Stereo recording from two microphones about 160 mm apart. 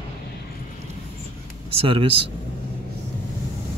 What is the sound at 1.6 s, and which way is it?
Speech, 35° right (ahead or behind).